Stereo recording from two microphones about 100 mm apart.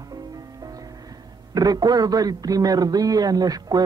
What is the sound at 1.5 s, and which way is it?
A man's voice, 40° right (ahead or behind).